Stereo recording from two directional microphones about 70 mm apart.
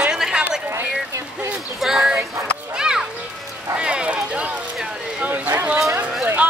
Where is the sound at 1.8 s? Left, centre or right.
Centre.